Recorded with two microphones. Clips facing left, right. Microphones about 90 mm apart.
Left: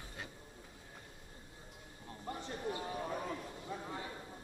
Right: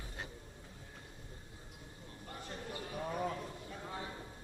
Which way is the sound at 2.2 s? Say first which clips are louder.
Left 5 dB; 25° left (ahead or behind).